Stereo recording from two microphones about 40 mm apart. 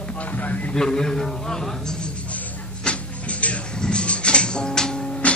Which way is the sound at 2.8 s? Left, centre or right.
Left.